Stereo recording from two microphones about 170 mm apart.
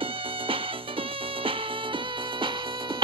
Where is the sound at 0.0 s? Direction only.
30° right (ahead or behind).